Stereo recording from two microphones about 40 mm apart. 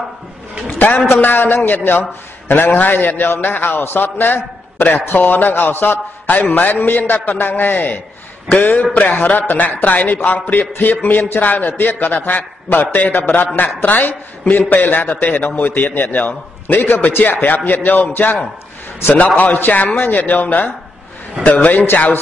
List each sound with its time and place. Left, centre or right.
0.7 s a man's voice: left
1.0 s a man's voice: left
2.7 s a man's voice: left